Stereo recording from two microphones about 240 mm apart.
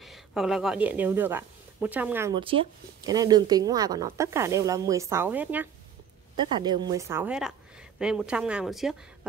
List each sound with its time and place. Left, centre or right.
0.0 s speech: centre
6.3 s a woman's voice: centre